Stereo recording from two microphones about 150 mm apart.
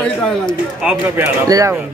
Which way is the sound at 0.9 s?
10° right (ahead or behind).